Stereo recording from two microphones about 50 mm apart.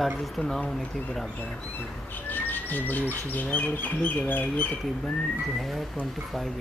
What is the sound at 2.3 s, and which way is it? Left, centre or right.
Speech, left.